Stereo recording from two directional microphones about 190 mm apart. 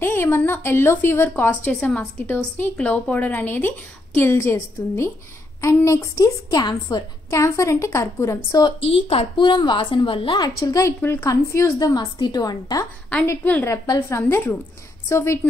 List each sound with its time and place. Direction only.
0.0 s a woman's voice: 10° left (ahead or behind)